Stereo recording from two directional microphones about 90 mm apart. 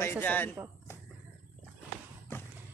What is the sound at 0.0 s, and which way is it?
Speech, 25° left (ahead or behind).